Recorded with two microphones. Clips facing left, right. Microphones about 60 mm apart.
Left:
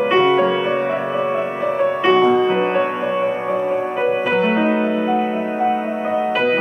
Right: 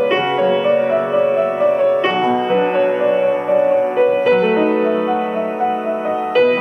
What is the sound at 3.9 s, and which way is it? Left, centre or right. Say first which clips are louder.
Music: right 4 dB; centre.